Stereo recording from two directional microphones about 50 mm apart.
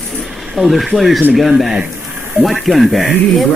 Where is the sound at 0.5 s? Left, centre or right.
Centre.